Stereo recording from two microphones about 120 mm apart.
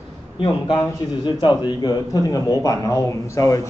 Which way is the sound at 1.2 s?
40° left (ahead or behind).